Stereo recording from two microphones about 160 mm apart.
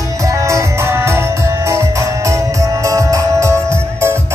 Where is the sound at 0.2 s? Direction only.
20° right (ahead or behind).